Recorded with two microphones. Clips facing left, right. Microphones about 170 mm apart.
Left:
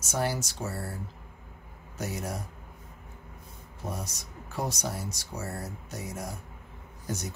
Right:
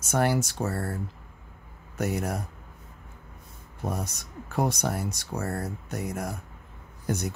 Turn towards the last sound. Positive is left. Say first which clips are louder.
# right 6 dB
turn(degrees=-60)  # may be behind; listen again after turning